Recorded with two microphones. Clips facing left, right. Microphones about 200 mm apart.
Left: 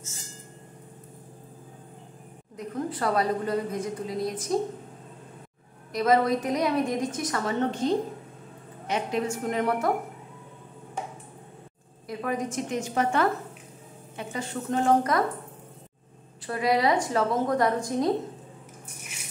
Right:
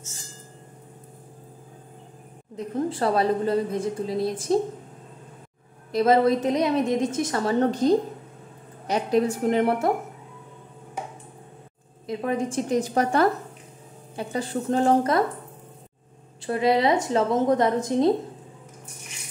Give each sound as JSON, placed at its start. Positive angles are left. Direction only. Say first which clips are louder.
{"t": 2.5, "sound": "a woman's voice", "louder": "right 5 dB", "side_deg": -25}
{"t": 5.9, "sound": "a woman's voice", "louder": "right 4 dB", "side_deg": -30}
{"t": 12.1, "sound": "a woman's voice", "louder": "right 4 dB", "side_deg": -25}
{"t": 16.4, "sound": "a woman's voice", "louder": "right 3 dB", "side_deg": -25}